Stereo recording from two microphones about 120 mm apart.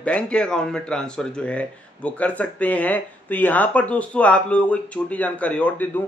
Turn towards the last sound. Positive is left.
turn(degrees=15)  # may be behind; listen again after turning